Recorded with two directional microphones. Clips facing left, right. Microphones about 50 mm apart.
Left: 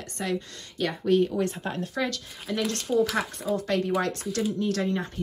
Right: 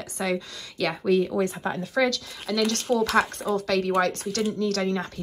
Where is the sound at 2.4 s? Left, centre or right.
Right.